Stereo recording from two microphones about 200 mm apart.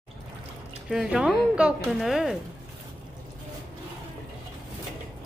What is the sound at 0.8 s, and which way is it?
Speech, 5° right (ahead or behind).